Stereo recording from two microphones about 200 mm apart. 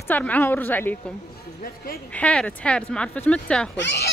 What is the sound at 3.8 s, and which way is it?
Speech, 60° left (ahead or behind).